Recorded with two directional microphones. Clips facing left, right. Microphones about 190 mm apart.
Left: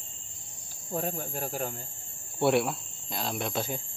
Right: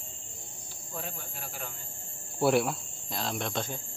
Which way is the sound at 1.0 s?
45° left (ahead or behind).